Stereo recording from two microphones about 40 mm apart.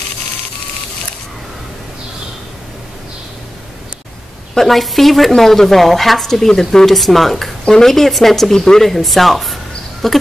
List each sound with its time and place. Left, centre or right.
4.6 s speech: centre